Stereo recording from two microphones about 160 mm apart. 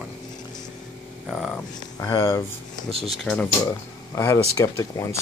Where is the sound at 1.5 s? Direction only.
20° left (ahead or behind).